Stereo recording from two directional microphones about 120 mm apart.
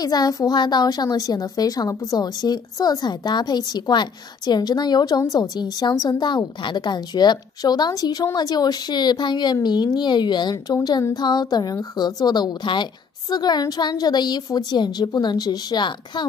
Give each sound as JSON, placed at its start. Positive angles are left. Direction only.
{"t": 0.0, "sound": "a woman's voice", "side_deg": 35}